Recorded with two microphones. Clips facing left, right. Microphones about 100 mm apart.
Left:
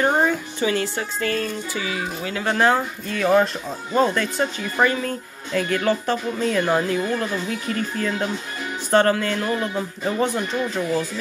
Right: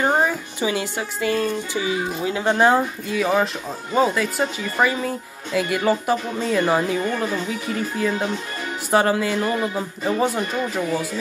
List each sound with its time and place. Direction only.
0.0 s speech: 15° right (ahead or behind)
3.2 s speech: 5° right (ahead or behind)